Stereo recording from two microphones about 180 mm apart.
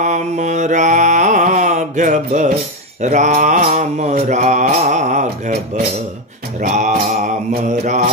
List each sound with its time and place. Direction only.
0.0 s mantra: 40° right (ahead or behind)
6.6 s music: 45° right (ahead or behind)
7.8 s mantra: 40° right (ahead or behind)